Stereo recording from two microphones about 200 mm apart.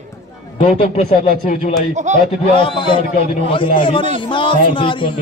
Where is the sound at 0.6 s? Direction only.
35° left (ahead or behind).